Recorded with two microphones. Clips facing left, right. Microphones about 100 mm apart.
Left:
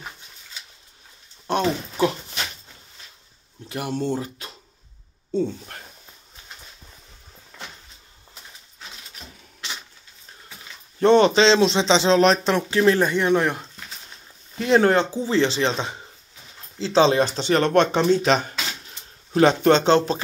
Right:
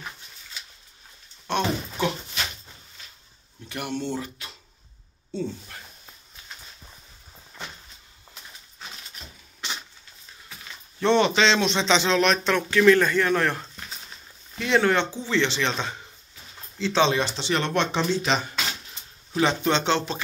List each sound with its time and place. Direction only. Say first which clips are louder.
1.5 s speech: left 3 dB; 35° left (ahead or behind)
3.6 s speech: left 4 dB; 30° left (ahead or behind)
5.3 s speech: left 7 dB; 50° left (ahead or behind)
11.0 s speech: left 5 dB; 40° left (ahead or behind); by 13.7 s 15° left (ahead or behind)
14.6 s speech: left 4 dB; 40° left (ahead or behind)